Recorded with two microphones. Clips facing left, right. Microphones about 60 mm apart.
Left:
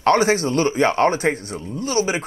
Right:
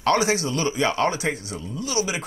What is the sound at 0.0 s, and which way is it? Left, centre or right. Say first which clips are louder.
A man's voice: left 4 dB; left.